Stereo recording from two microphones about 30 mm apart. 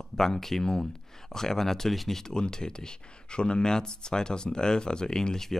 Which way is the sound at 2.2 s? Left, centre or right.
Left.